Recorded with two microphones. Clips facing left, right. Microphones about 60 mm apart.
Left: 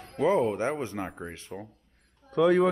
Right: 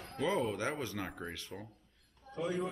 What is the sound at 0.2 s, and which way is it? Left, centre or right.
Speech, left.